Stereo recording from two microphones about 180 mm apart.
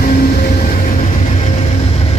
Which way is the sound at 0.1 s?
45° left (ahead or behind).